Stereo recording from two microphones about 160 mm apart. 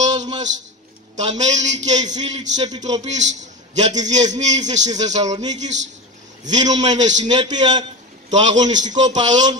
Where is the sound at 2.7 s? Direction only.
25° right (ahead or behind).